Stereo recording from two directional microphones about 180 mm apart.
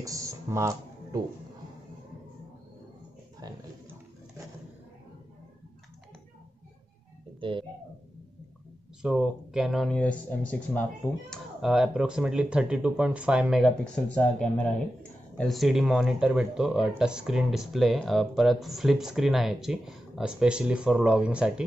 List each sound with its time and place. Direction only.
0.0 s speech: 20° right (ahead or behind)
3.3 s a sound: 20° right (ahead or behind)
7.3 s speech: 25° right (ahead or behind)
9.0 s speech: 5° right (ahead or behind)
11.2 s speech: centre (ahead or behind)